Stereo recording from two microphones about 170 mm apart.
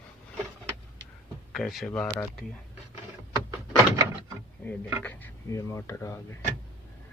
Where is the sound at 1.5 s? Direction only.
Centre (ahead or behind).